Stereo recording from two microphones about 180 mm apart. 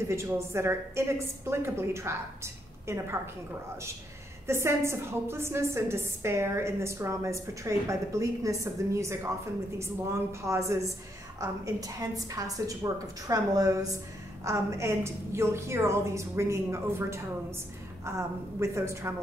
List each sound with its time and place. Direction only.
0.1 s a woman's voice: 15° right (ahead or behind)
4.5 s a woman's voice: 15° right (ahead or behind)